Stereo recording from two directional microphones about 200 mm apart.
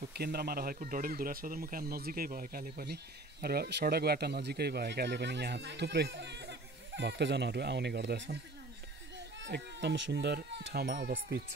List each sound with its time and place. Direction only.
0.2 s speech: 50° right (ahead or behind)
9.4 s speech: 60° right (ahead or behind)